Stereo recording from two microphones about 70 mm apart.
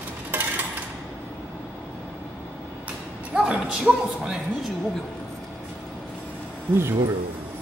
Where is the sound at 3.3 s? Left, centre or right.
Centre.